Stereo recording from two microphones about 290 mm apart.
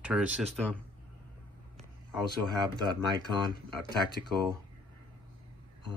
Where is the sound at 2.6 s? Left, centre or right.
Centre.